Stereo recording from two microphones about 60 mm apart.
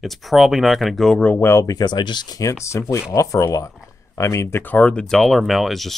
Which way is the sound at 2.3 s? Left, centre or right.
Left.